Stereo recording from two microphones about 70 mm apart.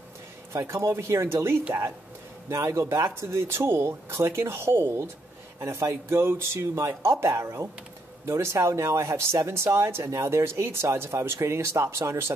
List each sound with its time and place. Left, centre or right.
0.5 s speech: right